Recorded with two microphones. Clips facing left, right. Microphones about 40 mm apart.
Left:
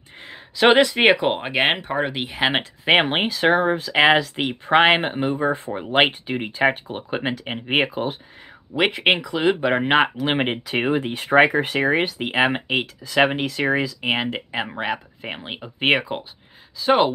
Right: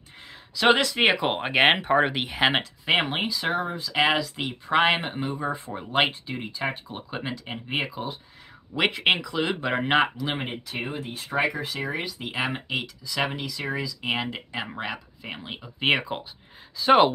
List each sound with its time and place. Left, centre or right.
0.2 s a sound: left
1.1 s speech: centre
2.6 s speech: left
3.9 s speech: left
8.7 s speech: centre
10.1 s speech: left
10.4 s speech: left
16.0 s speech: centre
16.8 s speech: centre